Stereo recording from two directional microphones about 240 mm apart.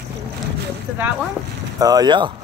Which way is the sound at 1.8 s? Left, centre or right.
Centre.